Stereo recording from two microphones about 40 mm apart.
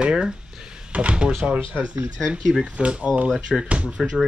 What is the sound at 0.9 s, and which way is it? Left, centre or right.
Speech, right.